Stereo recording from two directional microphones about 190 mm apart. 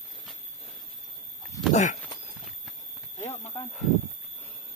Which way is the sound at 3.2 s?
35° left (ahead or behind).